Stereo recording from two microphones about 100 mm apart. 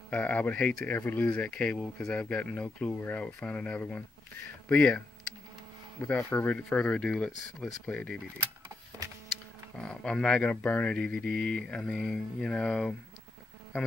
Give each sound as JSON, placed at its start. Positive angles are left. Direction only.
{"t": 0.1, "sound": "speech", "side_deg": 15}
{"t": 6.0, "sound": "speech", "side_deg": 25}
{"t": 6.3, "sound": "speech", "side_deg": 10}
{"t": 9.8, "sound": "speech", "side_deg": 10}